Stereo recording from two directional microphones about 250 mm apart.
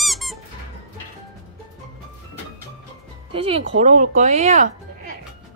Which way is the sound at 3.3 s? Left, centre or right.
Right.